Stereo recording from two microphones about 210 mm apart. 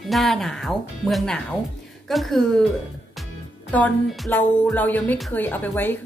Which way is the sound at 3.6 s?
5° left (ahead or behind).